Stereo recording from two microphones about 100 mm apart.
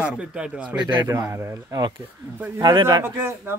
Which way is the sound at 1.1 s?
30° right (ahead or behind).